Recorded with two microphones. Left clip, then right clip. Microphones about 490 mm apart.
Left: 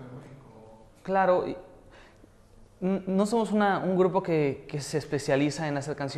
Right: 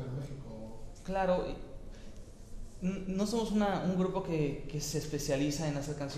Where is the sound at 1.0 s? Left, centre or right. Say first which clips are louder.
Left 8 dB; left.